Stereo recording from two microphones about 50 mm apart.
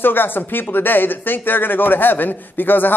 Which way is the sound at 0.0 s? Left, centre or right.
Left.